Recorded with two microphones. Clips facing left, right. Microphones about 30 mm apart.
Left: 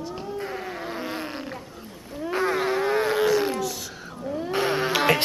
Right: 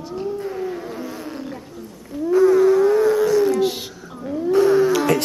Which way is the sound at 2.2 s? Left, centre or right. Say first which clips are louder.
Right 10 dB; left.